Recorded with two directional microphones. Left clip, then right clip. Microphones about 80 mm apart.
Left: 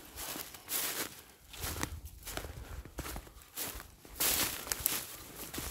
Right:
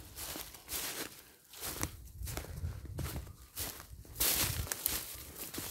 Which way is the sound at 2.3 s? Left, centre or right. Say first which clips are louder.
Left 3 dB; left.